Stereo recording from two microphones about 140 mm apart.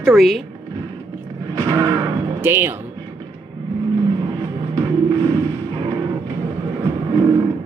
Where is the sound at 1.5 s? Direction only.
25° right (ahead or behind).